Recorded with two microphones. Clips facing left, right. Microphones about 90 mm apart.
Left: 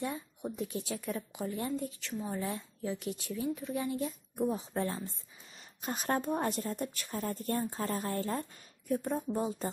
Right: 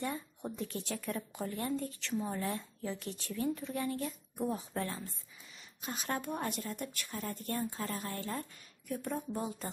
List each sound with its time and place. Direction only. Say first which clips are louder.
0.0 s speech: left 1 dB; 5° left (ahead or behind); by 5.0 s 25° left (ahead or behind)
5.8 s a woman's voice: left 5 dB; 40° left (ahead or behind)